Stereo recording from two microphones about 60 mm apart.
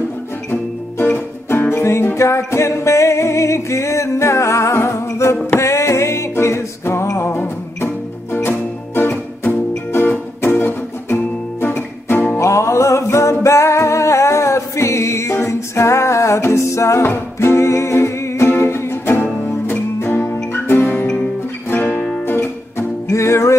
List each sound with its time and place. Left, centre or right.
0.5 s music: left
1.8 s music: left
12.4 s music: left
23.0 s music: left